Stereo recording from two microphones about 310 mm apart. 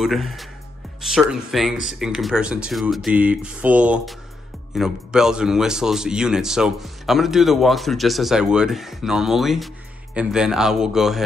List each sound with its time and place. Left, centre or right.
0.0 s a man's voice: centre